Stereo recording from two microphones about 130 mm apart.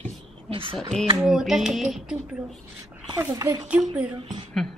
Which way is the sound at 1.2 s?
5° right (ahead or behind).